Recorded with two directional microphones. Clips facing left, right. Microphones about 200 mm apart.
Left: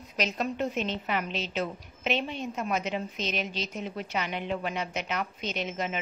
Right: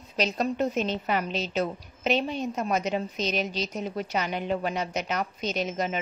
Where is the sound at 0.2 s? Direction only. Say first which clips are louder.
Right 4 dB; 35° right (ahead or behind).